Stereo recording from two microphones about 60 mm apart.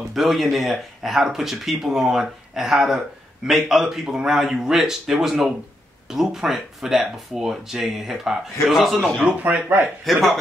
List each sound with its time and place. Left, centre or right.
0.1 s speech: centre
9.4 s speech: right
10.1 s speech: centre